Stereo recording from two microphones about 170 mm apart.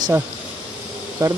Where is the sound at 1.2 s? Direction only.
20° right (ahead or behind).